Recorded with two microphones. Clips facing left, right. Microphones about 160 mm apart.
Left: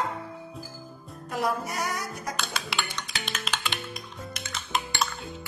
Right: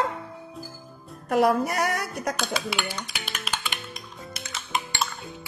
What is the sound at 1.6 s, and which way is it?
Speech, 65° right (ahead or behind).